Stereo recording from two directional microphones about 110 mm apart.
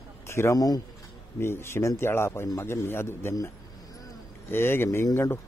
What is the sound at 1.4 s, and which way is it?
A man's voice, 25° left (ahead or behind).